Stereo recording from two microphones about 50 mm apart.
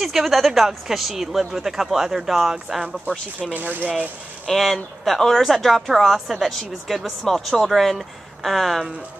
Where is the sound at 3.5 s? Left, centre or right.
Right.